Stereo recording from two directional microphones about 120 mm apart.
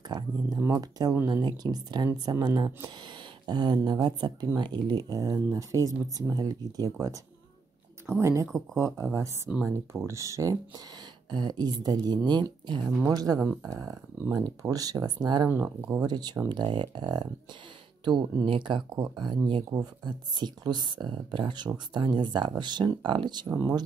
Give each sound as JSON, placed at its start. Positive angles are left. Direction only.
{"t": 0.1, "sound": "a sound", "side_deg": -35}
{"t": 0.6, "sound": "speech", "side_deg": -25}
{"t": 15.5, "sound": "speech", "side_deg": -20}
{"t": 16.1, "sound": "speech", "side_deg": -35}